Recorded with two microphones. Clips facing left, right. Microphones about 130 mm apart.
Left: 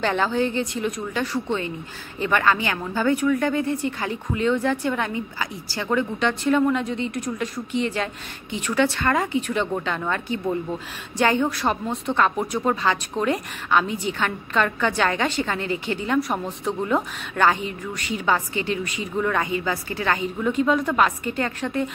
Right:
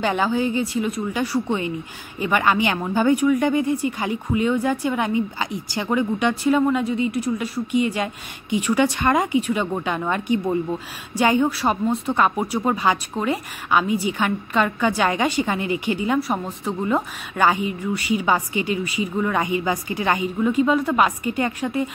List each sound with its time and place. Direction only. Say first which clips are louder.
0.0 s a woman's voice: right 1 dB; 10° right (ahead or behind)
20.4 s a woman's voice: right 2 dB; 5° right (ahead or behind)